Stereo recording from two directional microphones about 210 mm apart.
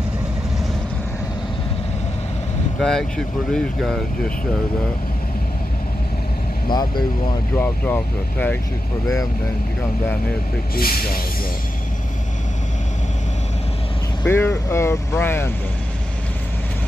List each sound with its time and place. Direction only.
2.8 s speech: centre (ahead or behind)
6.7 s speech: 20° left (ahead or behind)
7.5 s speech: 10° left (ahead or behind)
10.8 s speech: 45° left (ahead or behind)
14.2 s speech: 10° left (ahead or behind)